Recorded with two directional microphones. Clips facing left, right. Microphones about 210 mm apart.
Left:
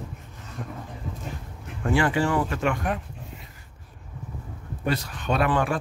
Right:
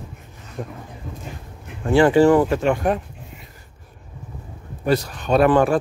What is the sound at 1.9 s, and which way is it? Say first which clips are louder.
Speech: right 9 dB; 30° right (ahead or behind).